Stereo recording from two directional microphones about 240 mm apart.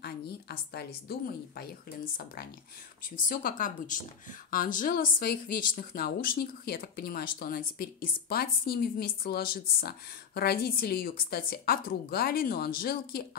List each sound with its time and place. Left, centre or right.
0.0 s a woman's voice: left
3.3 s speech: left